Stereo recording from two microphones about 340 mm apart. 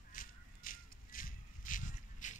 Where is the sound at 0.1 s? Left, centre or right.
Left.